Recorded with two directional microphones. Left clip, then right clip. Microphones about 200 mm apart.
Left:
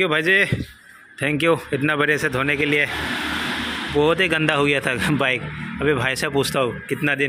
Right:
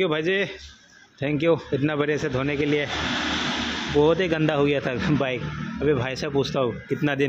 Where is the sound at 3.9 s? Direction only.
10° right (ahead or behind).